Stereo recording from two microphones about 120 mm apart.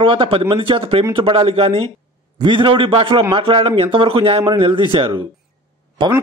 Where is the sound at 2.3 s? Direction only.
40° right (ahead or behind).